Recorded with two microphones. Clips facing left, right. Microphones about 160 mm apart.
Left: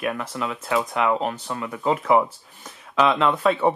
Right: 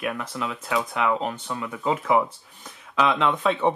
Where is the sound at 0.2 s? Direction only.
Centre (ahead or behind).